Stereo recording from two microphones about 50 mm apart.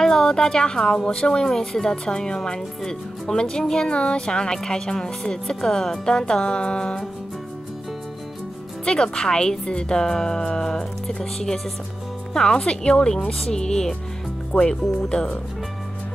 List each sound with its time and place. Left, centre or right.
0.0 s a woman's voice: centre
8.8 s a woman's voice: centre